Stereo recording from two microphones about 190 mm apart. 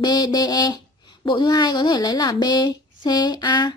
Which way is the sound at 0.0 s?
20° left (ahead or behind).